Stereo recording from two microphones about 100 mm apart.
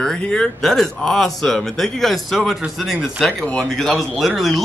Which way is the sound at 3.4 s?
10° left (ahead or behind).